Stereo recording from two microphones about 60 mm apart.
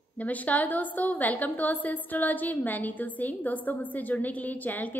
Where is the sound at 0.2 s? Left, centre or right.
Left.